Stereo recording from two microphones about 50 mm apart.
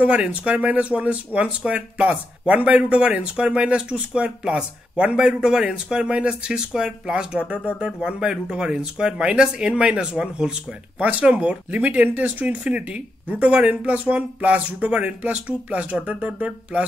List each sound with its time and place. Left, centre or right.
0.0 s speech: right